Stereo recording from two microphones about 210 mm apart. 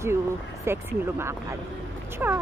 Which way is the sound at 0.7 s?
10° right (ahead or behind).